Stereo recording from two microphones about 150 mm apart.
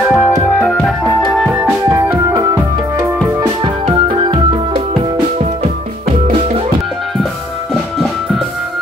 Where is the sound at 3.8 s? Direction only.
35° right (ahead or behind).